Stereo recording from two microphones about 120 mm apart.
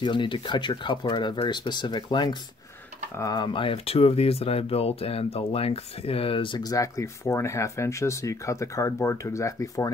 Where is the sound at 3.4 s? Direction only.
45° left (ahead or behind).